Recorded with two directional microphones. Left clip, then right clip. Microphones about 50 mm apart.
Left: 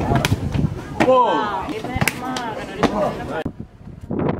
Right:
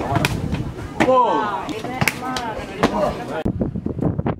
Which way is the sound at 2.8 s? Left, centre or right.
Right.